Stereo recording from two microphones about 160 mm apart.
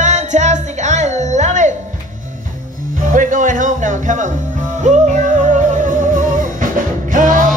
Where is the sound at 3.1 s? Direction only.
55° right (ahead or behind).